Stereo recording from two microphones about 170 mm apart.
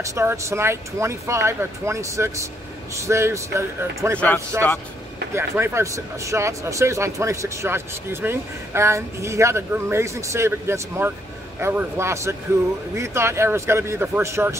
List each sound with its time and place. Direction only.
0.0 s speech: 15° right (ahead or behind)
5.3 s speech: 15° right (ahead or behind)